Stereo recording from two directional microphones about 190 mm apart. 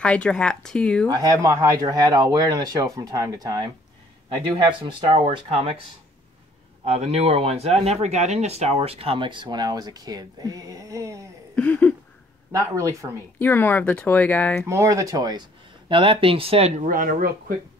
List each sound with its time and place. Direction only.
0.0 s speech: 5° left (ahead or behind)
1.0 s speech: 20° right (ahead or behind)
4.8 s speech: 30° right (ahead or behind)
6.8 s speech: 30° right (ahead or behind); by 11.2 s 15° right (ahead or behind)
11.5 s a sound: 10° left (ahead or behind)
12.5 s speech: 15° right (ahead or behind)
13.4 s speech: 10° left (ahead or behind)
14.7 s speech: 15° right (ahead or behind); by 17.6 s 45° right (ahead or behind)